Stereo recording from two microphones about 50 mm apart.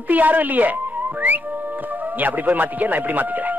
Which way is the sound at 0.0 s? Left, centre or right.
Right.